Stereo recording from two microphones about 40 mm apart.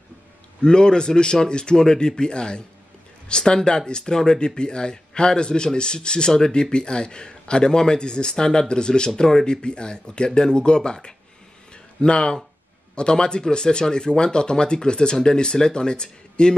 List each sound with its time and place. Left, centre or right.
0.6 s speech: left
11.7 s a sound: left
12.9 s speech: left